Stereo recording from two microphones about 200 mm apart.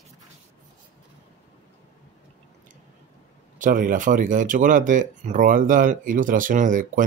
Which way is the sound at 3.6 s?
40° right (ahead or behind).